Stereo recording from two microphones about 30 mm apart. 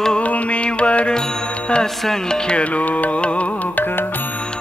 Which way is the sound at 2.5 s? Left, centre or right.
Left.